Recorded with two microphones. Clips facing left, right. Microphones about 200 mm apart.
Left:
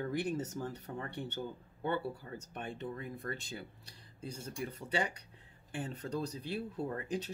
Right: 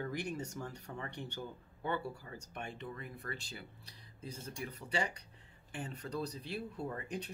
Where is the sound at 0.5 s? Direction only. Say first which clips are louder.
Left 4 dB; 35° left (ahead or behind).